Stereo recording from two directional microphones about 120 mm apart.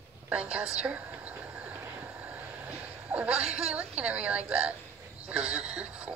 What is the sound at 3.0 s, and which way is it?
A woman's voice, 10° right (ahead or behind).